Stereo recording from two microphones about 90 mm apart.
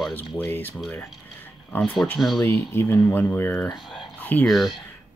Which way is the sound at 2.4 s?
25° left (ahead or behind).